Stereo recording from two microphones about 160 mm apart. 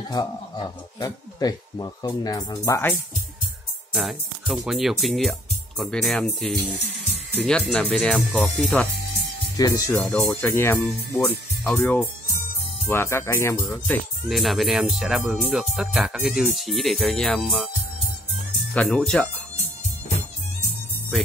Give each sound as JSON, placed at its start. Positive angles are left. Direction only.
{"t": 0.1, "sound": "speech", "side_deg": 25}
{"t": 3.9, "sound": "speech", "side_deg": 0}
{"t": 9.6, "sound": "speech", "side_deg": 20}
{"t": 12.8, "sound": "speech", "side_deg": 15}
{"t": 13.7, "sound": "speech", "side_deg": 0}
{"t": 18.7, "sound": "speech", "side_deg": 5}